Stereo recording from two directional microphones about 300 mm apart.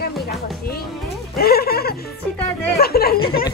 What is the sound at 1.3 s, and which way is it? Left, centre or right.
Speech, left.